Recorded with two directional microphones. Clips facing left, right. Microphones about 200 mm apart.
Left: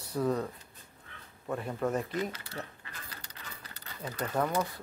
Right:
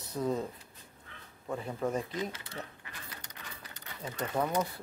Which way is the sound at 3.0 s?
20° right (ahead or behind).